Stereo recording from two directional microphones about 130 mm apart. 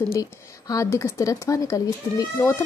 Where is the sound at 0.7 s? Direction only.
25° left (ahead or behind).